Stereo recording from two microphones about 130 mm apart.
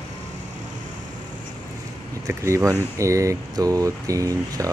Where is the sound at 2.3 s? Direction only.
25° right (ahead or behind).